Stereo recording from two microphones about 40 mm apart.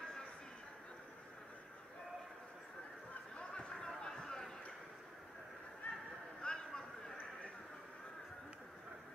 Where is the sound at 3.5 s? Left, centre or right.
Left.